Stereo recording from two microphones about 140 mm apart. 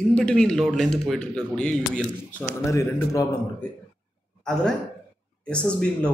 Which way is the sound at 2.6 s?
20° left (ahead or behind).